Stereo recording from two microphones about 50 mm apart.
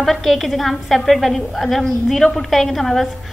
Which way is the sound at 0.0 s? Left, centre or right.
Centre.